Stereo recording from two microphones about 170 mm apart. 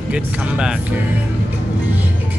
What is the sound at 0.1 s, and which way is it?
Speech, 5° right (ahead or behind).